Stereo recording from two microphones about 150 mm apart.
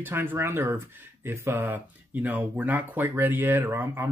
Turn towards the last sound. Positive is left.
turn(degrees=-15)  # may be behind; listen again after turning